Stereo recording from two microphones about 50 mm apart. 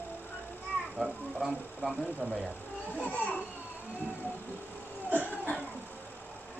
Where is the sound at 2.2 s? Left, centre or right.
Left.